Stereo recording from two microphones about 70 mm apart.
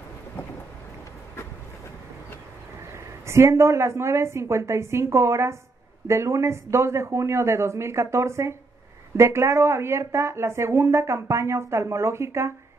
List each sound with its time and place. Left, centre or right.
3.3 s speech: right